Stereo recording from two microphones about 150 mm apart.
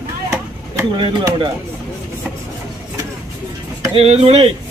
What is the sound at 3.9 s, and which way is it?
Speech, 40° right (ahead or behind).